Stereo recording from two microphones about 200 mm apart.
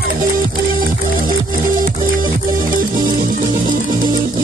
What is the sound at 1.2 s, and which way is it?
Music, 45° right (ahead or behind).